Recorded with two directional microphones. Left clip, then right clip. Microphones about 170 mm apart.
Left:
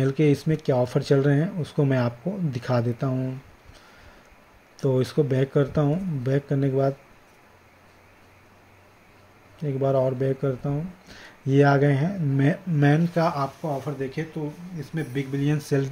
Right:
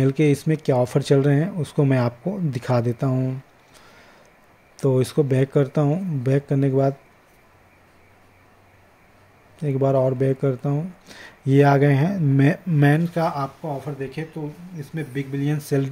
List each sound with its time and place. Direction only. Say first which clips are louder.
0.0 s speech: right 2 dB; 15° right (ahead or behind)
4.7 s speech: right 3 dB; 15° right (ahead or behind)
9.6 s speech: right 3 dB; 15° right (ahead or behind)
13.1 s speech: even; centre (ahead or behind)